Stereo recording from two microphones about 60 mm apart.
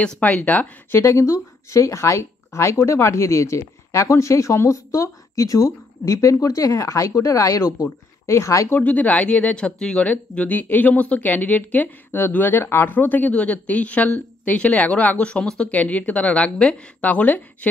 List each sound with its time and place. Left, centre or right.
0.2 s speech: left
1.0 s speech: left
7.6 s speech: left
8.7 s speech: left
10.0 s speech: left
15.7 s speech: left